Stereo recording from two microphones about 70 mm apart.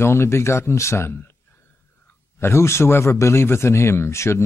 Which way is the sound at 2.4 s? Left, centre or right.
Left.